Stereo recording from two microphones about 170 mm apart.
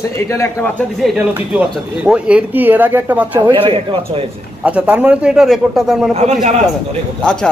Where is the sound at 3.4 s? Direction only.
25° right (ahead or behind).